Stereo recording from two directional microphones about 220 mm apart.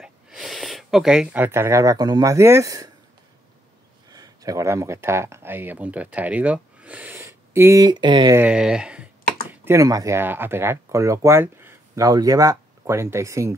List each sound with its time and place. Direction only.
0.0 s speech: centre (ahead or behind)
4.1 s speech: 15° right (ahead or behind)
8.4 s speech: 5° right (ahead or behind)